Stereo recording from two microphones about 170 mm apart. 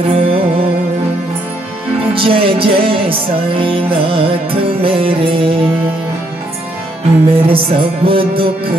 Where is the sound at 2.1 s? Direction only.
30° right (ahead or behind).